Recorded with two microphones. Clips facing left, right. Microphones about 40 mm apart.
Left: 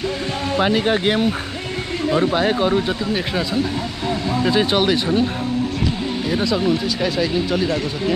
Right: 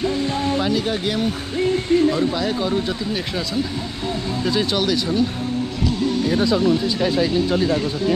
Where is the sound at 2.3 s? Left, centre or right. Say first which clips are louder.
Left 4 dB; left.